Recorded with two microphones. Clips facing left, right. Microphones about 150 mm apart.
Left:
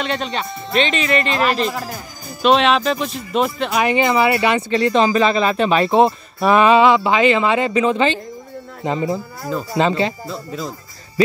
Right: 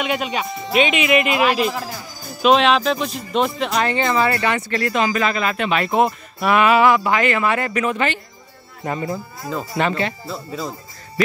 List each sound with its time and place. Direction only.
0.0 s speech: 10° right (ahead or behind)
3.8 s speech: 15° left (ahead or behind); by 6.8 s 30° left (ahead or behind)
6.8 s speech: 20° left (ahead or behind)
10.2 s speech: centre (ahead or behind)